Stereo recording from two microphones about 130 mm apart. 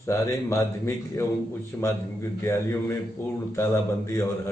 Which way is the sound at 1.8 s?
20° left (ahead or behind).